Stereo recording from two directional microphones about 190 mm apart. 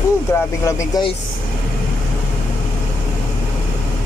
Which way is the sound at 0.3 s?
15° left (ahead or behind).